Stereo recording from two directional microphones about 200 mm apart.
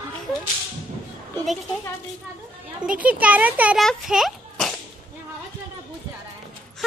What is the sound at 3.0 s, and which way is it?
A child's voice, 5° right (ahead or behind).